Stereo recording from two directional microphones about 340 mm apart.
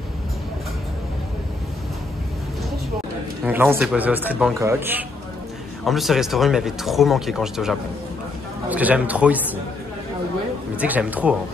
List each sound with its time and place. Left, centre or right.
3.4 s speech: centre
10.8 s speech: centre